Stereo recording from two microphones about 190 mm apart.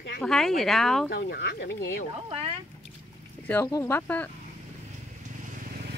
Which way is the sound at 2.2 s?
30° right (ahead or behind).